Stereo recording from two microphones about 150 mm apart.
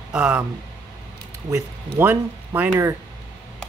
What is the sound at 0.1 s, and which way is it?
Speech, 5° right (ahead or behind).